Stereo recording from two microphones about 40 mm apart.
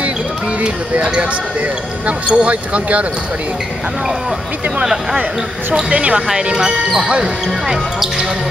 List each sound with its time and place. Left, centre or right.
2.0 s speech: right
5.9 s speech: right
6.3 s speech: centre